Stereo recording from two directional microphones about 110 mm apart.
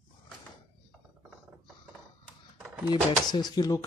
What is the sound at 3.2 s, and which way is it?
Speech, 40° left (ahead or behind).